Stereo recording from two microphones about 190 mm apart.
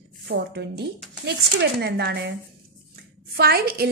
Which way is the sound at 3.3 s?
55° right (ahead or behind).